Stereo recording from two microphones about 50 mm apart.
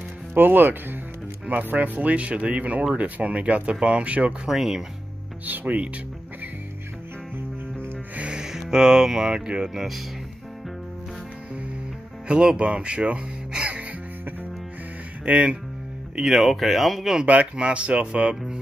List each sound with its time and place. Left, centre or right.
0.3 s speech: right
4.5 s speech: centre
5.4 s speech: right
8.2 s music: right
9.8 s speech: centre
12.3 s speech: right
15.2 s speech: right
16.2 s speech: centre
17.3 s speech: right
18.3 s speech: centre